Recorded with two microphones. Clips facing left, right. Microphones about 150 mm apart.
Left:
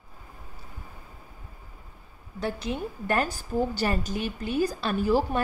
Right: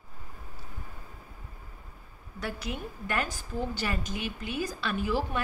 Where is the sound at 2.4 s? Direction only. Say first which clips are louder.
Left 5 dB; 30° left (ahead or behind).